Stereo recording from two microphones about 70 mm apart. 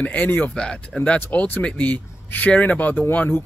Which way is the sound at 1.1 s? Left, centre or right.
Left.